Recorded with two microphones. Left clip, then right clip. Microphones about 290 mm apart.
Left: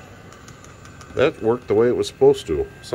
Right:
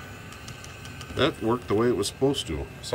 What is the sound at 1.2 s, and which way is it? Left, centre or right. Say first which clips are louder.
Speech: left 6 dB; centre.